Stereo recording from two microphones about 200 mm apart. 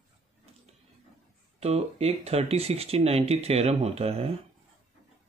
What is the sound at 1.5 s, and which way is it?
Speech, 30° right (ahead or behind).